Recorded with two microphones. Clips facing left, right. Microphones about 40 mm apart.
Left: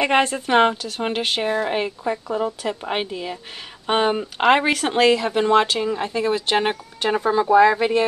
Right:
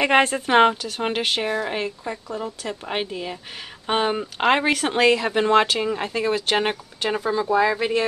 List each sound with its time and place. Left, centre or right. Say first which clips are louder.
0.0 s speech: right 1 dB; centre